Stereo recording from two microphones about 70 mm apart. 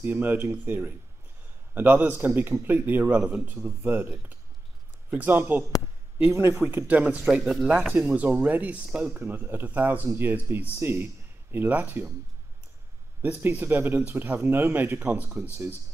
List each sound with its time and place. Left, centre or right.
0.0 s a man's voice: right
13.2 s a man's voice: right